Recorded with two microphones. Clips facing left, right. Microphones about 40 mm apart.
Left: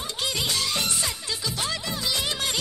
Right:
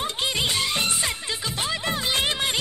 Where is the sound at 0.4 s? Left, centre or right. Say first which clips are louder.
Right 2 dB; right.